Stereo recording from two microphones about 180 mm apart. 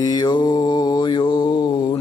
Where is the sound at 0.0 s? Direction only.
20° left (ahead or behind).